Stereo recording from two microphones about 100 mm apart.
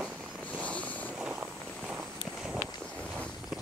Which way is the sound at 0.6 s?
15° left (ahead or behind).